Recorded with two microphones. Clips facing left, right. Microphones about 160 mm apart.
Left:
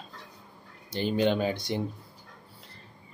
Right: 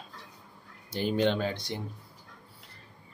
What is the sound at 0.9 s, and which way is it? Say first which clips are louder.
Speech: left 1 dB; 5° right (ahead or behind).